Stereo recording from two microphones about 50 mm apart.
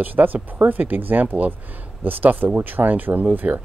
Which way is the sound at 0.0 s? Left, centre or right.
Right.